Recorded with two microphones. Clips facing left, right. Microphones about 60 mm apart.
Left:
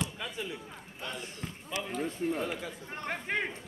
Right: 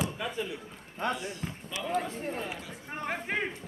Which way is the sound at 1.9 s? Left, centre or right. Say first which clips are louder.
Even; right.